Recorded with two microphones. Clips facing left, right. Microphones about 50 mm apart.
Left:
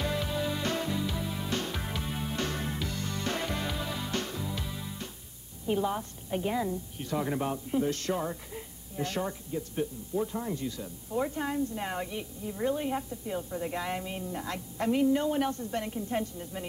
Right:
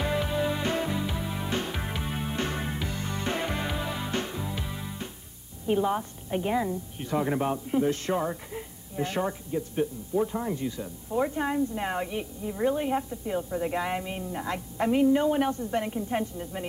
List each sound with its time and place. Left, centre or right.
0.0 s music: right
5.7 s a woman's voice: right